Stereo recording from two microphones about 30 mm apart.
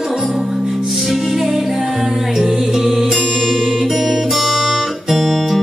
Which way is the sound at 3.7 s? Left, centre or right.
Centre.